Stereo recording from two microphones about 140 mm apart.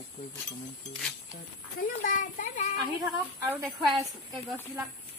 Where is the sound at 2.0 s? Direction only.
65° left (ahead or behind).